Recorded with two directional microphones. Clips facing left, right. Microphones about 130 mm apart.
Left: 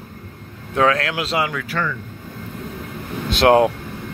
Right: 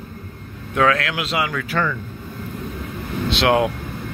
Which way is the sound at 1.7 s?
55° right (ahead or behind).